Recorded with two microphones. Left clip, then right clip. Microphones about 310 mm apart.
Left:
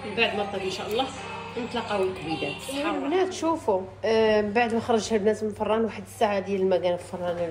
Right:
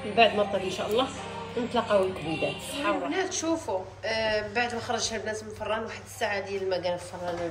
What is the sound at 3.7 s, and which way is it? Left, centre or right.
Speech, centre.